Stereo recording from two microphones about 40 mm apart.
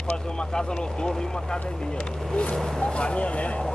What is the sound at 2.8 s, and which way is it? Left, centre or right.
Speech, left.